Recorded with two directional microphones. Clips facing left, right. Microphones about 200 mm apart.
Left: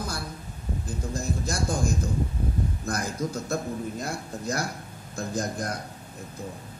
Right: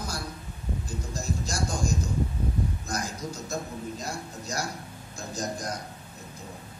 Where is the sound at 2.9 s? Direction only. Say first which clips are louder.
Left 4 dB; 55° left (ahead or behind).